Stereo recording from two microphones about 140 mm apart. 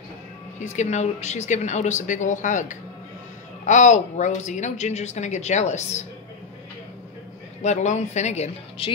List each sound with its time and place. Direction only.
0.6 s a woman's voice: 55° left (ahead or behind)
7.6 s a woman's voice: 55° left (ahead or behind)